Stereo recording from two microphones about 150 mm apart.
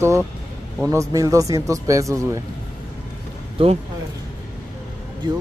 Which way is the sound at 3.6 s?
40° right (ahead or behind).